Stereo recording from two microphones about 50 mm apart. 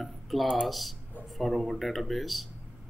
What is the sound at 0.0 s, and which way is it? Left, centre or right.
Music, centre.